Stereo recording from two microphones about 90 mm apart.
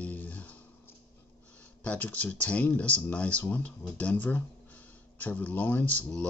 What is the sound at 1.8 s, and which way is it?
Speech, 15° left (ahead or behind).